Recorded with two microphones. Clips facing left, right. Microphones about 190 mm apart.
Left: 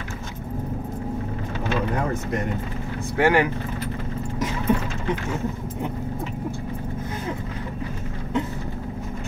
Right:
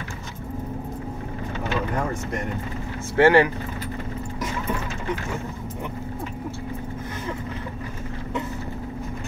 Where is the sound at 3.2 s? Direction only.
15° left (ahead or behind).